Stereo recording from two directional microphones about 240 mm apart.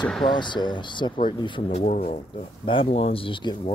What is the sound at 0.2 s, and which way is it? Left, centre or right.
Speech, centre.